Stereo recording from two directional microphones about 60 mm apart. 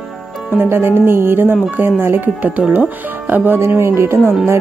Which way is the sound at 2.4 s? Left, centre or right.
Right.